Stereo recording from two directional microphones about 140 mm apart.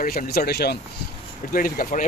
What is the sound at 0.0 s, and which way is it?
Speech, 80° left.